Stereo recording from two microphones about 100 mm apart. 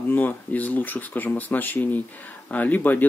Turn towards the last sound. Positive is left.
turn(degrees=20)  # may be behind; listen again after turning